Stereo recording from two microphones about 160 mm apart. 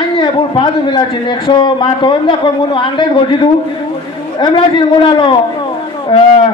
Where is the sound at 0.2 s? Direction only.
30° left (ahead or behind).